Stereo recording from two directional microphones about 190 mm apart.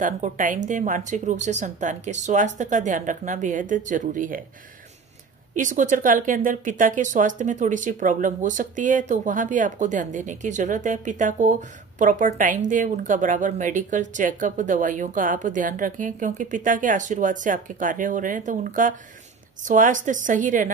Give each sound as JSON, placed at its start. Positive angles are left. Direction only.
{"t": 0.0, "sound": "speech", "side_deg": -45}
{"t": 5.6, "sound": "speech", "side_deg": -40}